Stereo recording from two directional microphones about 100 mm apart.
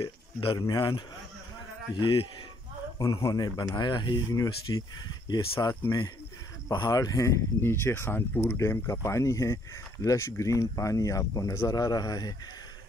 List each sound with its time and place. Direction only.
0.0 s a sound: 60° left (ahead or behind)
0.6 s a man's voice: 45° left (ahead or behind)
3.0 s speech: 35° left (ahead or behind)